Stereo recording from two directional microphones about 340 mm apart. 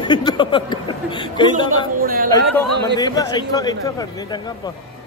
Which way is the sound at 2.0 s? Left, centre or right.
Right.